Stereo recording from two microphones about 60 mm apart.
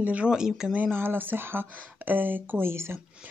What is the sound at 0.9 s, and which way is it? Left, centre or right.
Speech, right.